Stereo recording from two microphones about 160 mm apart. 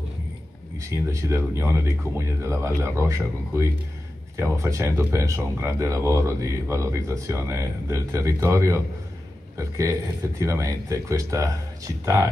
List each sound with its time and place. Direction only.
0.7 s speech: 20° right (ahead or behind)